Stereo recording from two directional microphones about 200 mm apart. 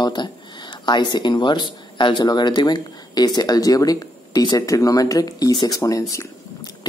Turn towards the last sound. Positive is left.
turn(degrees=15)  # may be behind; listen again after turning